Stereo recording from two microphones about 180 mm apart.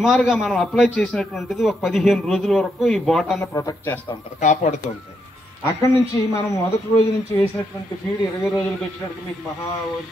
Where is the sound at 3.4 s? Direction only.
15° left (ahead or behind).